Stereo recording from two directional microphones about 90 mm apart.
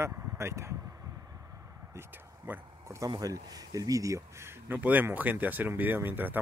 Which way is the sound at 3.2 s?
45° right (ahead or behind).